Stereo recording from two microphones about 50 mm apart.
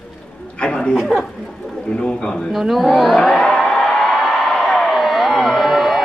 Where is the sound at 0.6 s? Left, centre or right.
Centre.